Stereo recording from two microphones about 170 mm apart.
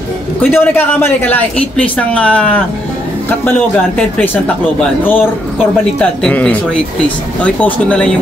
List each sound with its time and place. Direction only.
0.4 s speech: 15° left (ahead or behind)